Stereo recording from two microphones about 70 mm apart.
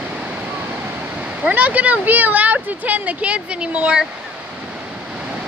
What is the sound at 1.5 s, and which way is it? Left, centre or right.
Speech, right.